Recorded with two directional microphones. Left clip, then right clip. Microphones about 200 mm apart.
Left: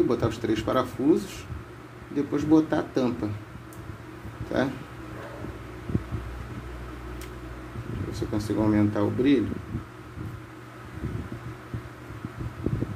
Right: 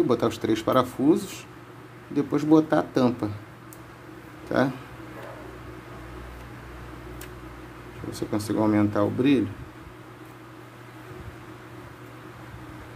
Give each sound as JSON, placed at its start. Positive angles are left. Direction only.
{"t": 0.1, "sound": "speech", "side_deg": -25}
{"t": 4.5, "sound": "speech", "side_deg": -25}
{"t": 8.1, "sound": "speech", "side_deg": -25}